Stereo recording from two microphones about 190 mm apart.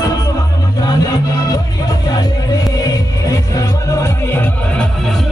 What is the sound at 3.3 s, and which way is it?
Music, 15° left (ahead or behind).